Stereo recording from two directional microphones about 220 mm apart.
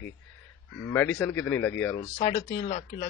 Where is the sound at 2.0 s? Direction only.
30° left (ahead or behind).